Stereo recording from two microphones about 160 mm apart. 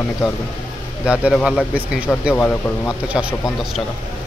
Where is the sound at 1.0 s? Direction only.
5° right (ahead or behind).